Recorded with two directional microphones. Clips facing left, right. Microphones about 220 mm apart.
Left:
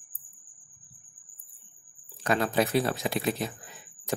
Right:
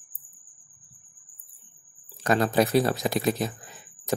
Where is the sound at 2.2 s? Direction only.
40° right (ahead or behind).